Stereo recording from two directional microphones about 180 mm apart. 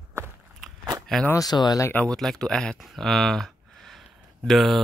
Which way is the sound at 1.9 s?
5° left (ahead or behind).